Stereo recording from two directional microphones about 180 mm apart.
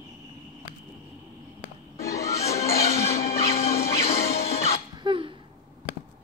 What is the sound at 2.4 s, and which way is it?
Music, 35° left (ahead or behind).